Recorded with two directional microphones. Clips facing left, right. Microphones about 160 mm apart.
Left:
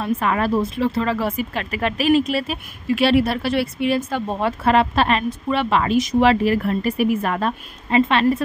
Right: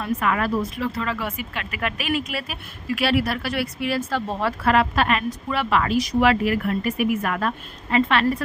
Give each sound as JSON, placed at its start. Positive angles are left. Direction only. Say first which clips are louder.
{"t": 0.0, "sound": "speech", "louder": "left 3 dB", "side_deg": 30}